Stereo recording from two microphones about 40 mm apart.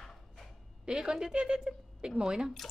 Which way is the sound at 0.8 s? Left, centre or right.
Centre.